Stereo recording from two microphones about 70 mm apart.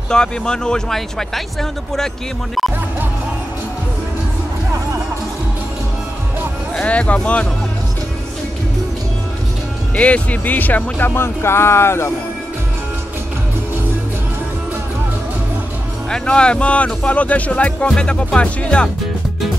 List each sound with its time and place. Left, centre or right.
0.1 s speech: centre
6.8 s speech: centre
9.9 s speech: centre; by 12.1 s left
16.1 s speech: centre